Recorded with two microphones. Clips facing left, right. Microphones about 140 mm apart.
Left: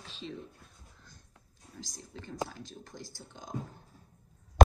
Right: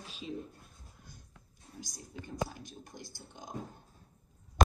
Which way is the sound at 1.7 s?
50° right (ahead or behind).